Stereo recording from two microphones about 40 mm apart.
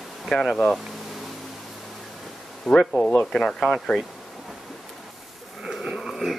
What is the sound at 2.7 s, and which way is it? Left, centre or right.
Speech, centre.